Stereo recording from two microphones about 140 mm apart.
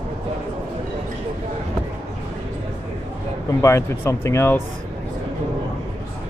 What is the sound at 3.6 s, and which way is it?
Speech, 20° left (ahead or behind).